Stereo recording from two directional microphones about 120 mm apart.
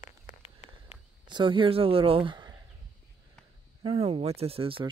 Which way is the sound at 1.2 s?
40° right (ahead or behind).